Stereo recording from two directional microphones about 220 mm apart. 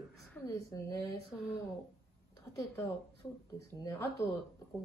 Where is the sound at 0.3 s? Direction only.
15° left (ahead or behind).